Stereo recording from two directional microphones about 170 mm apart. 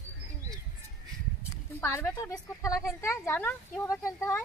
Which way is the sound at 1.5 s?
15° left (ahead or behind).